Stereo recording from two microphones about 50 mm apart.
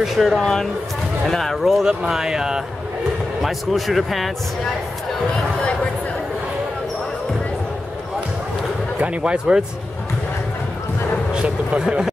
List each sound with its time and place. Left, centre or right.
0.0 s speech: centre
0.4 s speech: centre
1.9 s speech: centre
3.4 s speech: centre
9.0 s speech: right
11.3 s vehicle: centre